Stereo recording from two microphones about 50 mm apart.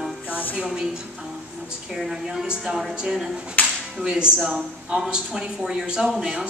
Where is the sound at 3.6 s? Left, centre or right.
Left.